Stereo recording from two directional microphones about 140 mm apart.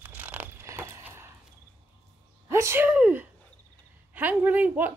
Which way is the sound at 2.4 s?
20° right (ahead or behind).